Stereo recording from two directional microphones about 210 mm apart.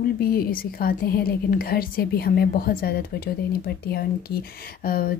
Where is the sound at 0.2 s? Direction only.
45° left (ahead or behind).